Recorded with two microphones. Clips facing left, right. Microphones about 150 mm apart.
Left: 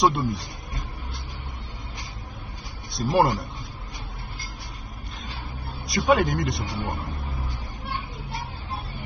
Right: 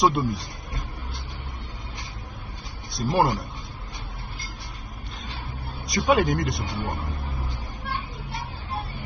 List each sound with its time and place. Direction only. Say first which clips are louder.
0.0 s a man's voice: even; centre (ahead or behind)
2.9 s speech: left 1 dB; centre (ahead or behind)
5.9 s a man's voice: even; centre (ahead or behind)